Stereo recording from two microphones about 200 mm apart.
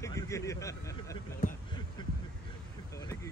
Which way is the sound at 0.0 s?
15° left (ahead or behind).